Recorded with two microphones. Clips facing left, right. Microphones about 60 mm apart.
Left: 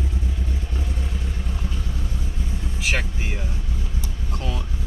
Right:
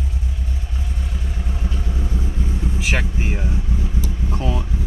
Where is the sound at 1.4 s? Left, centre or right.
Centre.